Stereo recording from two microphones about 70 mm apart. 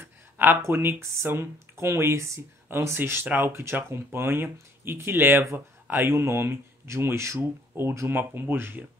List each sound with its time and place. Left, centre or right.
0.0 s speech: right